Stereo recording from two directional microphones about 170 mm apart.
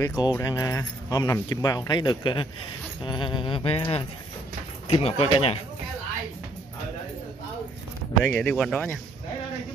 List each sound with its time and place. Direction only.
0.0 s speech: 25° left (ahead or behind)
3.0 s a sound: 30° left (ahead or behind)
8.3 s speech: 10° left (ahead or behind)